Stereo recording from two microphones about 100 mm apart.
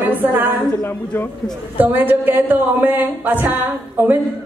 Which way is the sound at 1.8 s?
20° right (ahead or behind).